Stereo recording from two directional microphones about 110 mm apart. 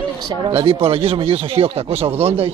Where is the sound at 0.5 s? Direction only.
55° right (ahead or behind).